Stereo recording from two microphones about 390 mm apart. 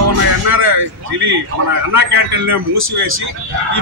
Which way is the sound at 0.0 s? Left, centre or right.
Right.